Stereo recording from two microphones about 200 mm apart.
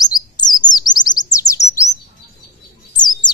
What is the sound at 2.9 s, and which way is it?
Bird, 20° left (ahead or behind).